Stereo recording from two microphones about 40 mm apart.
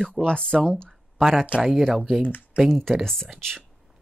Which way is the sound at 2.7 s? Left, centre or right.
Centre.